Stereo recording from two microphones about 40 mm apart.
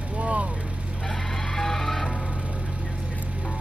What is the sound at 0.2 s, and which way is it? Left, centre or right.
Vehicle, right.